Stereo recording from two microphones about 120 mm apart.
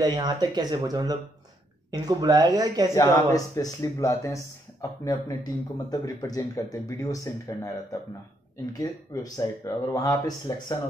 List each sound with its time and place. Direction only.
0.0 s speech: 35° right (ahead or behind)
2.9 s speech: 25° left (ahead or behind)